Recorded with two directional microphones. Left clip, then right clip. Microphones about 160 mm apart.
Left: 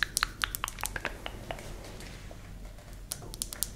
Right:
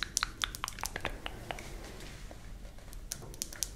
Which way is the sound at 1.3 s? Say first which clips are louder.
Left 2 dB; 15° right (ahead or behind).